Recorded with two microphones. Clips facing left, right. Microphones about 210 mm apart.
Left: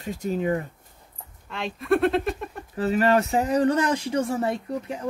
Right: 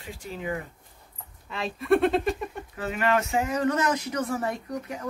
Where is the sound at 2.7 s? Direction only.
35° left (ahead or behind).